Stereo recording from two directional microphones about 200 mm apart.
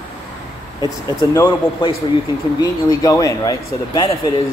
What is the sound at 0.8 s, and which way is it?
Speech, 15° left (ahead or behind).